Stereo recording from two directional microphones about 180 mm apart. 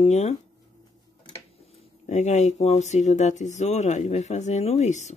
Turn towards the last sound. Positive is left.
turn(degrees=40)  # may be behind; listen again after turning